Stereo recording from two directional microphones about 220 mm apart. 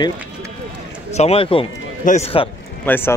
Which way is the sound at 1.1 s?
25° left (ahead or behind).